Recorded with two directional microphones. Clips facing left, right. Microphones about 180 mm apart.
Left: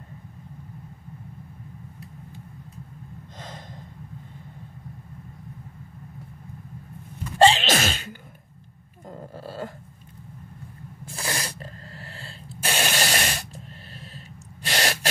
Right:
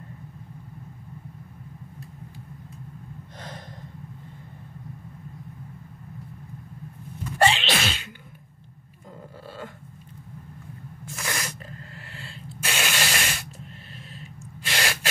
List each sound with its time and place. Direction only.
3.3 s gasp: 20° left (ahead or behind)
7.3 s sneeze: 30° left (ahead or behind)
7.6 s sneeze: 45° left (ahead or behind)
9.4 s dog: 40° left (ahead or behind)
11.1 s a sound: 30° left (ahead or behind)
14.6 s gasp: 40° left (ahead or behind)